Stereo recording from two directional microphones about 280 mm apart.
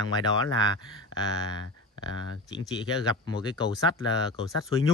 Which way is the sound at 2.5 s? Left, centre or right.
Centre.